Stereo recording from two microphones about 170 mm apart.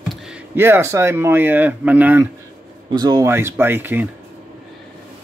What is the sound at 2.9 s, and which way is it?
Speech, 25° right (ahead or behind).